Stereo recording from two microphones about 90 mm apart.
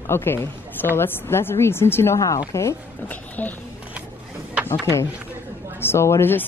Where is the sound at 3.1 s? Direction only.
20° left (ahead or behind).